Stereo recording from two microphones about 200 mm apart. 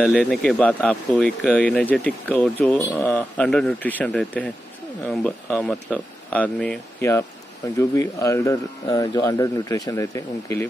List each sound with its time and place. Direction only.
0.0 s speech: centre (ahead or behind)